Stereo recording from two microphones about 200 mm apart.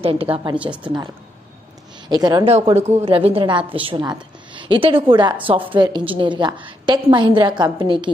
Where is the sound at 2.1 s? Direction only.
20° right (ahead or behind).